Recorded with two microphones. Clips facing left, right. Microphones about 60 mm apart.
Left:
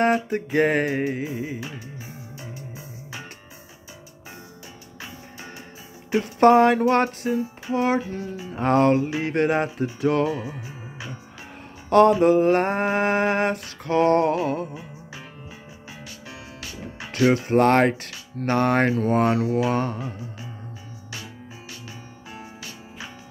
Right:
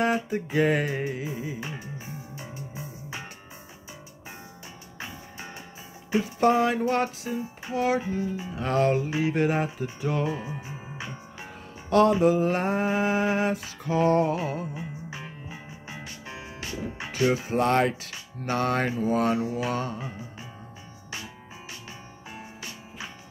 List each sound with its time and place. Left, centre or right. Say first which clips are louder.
0.0 s speech: left 4 dB; left
2.3 s music: even; centre
6.1 s speech: left 6 dB; left
9.2 s a sound: left 3 dB; left
11.9 s a sound: left 4 dB; left
17.1 s speech: left 5 dB; left
17.5 s speech: left 5 dB; left
19.3 s a sound: left 6 dB; left
19.7 s speech: left 5 dB; left